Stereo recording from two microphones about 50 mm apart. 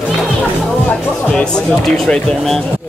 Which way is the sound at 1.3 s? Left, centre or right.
Centre.